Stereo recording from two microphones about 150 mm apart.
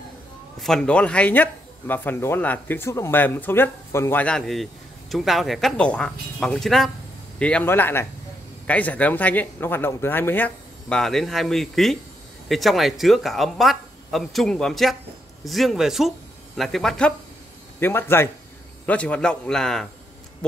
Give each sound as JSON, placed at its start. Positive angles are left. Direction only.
{"t": 0.6, "sound": "speech", "side_deg": 5}
{"t": 17.7, "sound": "speech", "side_deg": 15}